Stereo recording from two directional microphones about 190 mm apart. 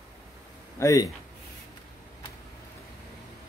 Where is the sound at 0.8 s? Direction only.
20° left (ahead or behind).